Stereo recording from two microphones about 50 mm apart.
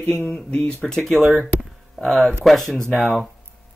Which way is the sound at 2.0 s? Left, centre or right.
Centre.